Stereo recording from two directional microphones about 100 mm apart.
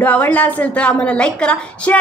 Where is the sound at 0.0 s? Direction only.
15° left (ahead or behind).